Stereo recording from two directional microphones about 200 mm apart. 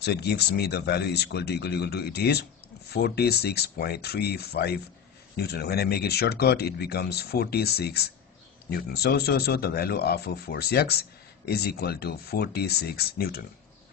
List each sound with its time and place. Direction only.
0.0 s speech: 55° left (ahead or behind)